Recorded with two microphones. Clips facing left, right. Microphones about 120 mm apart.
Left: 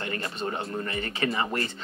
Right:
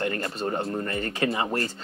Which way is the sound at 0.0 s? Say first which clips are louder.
Right 4 dB; 50° right (ahead or behind).